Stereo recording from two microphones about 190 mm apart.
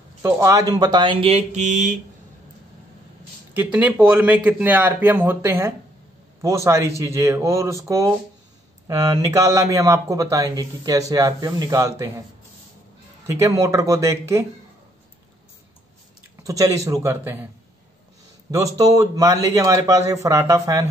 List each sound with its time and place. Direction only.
0.2 s speech: 15° right (ahead or behind); by 2.0 s 40° right (ahead or behind)
3.5 s speech: 10° right (ahead or behind)
13.3 s speech: 15° right (ahead or behind)
16.4 s speech: 15° right (ahead or behind)
18.5 s speech: 20° right (ahead or behind)